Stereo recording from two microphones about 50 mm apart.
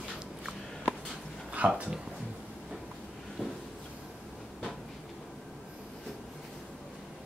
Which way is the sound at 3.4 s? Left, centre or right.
Centre.